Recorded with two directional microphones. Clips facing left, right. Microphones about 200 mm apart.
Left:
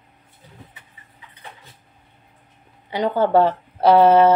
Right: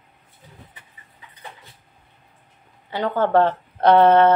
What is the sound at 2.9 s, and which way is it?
Speech, 10° left (ahead or behind).